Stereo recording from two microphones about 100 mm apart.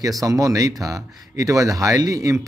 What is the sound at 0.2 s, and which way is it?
Speech, 35° right (ahead or behind).